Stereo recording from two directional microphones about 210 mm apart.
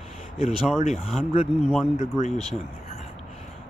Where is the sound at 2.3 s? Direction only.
Centre (ahead or behind).